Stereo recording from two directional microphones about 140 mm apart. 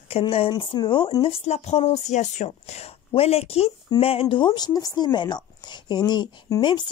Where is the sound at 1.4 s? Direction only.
50° left (ahead or behind).